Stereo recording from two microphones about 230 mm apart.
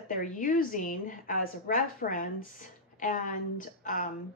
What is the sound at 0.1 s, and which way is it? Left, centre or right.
A woman's voice, left.